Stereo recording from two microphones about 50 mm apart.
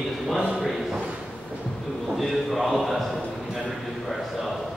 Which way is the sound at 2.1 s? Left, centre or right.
Centre.